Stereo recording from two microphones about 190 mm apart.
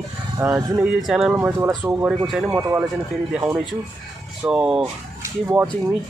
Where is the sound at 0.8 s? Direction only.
Centre (ahead or behind).